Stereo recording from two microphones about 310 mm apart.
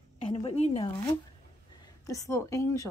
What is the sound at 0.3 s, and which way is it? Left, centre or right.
Speech, centre.